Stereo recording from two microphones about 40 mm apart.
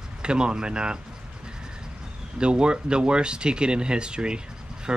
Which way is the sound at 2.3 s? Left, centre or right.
Right.